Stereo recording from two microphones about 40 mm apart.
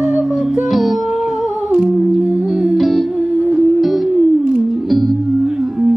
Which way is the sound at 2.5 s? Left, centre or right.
Right.